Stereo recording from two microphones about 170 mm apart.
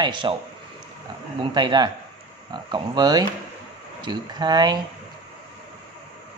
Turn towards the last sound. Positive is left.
turn(degrees=-25)  # may be behind; listen again after turning